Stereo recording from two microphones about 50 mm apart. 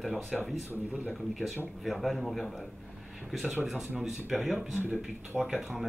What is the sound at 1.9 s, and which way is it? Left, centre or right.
Speech, centre.